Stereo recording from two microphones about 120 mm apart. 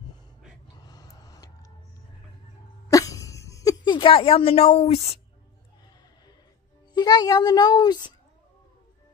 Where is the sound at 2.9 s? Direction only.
30° left (ahead or behind); by 5.1 s 60° left (ahead or behind).